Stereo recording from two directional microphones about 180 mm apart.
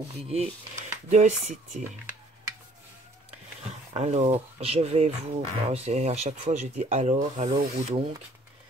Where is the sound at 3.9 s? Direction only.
35° right (ahead or behind).